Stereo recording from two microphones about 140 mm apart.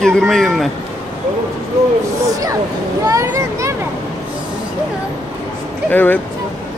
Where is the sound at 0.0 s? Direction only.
5° left (ahead or behind).